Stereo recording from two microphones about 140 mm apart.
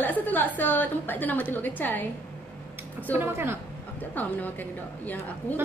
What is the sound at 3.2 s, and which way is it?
Speech, 15° right (ahead or behind).